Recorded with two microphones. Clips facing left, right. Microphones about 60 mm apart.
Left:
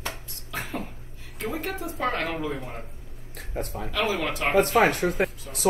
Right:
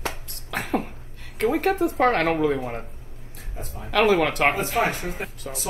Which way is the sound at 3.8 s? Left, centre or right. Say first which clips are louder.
Right 9 dB; right.